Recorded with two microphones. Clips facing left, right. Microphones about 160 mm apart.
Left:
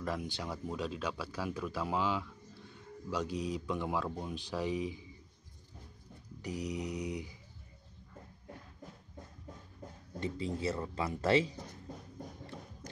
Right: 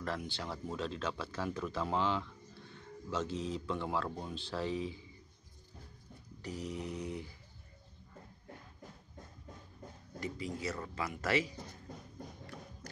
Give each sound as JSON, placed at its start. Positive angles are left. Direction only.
{"t": 0.0, "sound": "speech", "side_deg": 15}
{"t": 6.4, "sound": "speech", "side_deg": 15}
{"t": 10.2, "sound": "speech", "side_deg": 30}
{"t": 12.8, "sound": "music", "side_deg": 20}